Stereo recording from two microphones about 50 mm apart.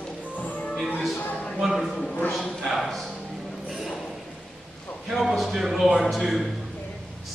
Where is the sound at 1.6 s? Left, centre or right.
Centre.